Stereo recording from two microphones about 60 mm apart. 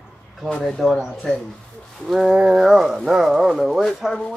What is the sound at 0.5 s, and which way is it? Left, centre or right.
Speech, centre.